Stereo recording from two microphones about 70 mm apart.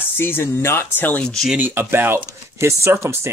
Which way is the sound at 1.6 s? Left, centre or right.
Right.